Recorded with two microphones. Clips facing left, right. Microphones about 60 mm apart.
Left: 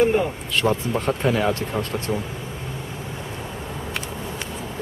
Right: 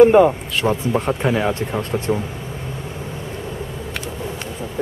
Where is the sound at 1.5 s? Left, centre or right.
Right.